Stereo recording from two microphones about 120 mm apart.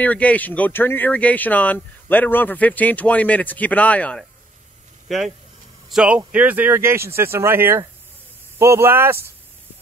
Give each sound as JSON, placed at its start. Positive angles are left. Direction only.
{"t": 0.0, "sound": "speech", "side_deg": 10}
{"t": 5.0, "sound": "speech", "side_deg": 0}